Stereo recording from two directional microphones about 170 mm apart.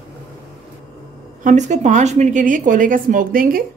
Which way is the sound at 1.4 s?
45° right (ahead or behind).